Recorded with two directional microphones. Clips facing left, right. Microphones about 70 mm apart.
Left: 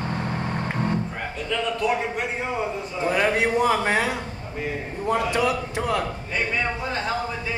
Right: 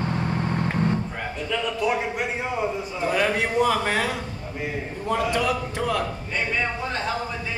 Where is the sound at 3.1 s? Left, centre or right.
Left.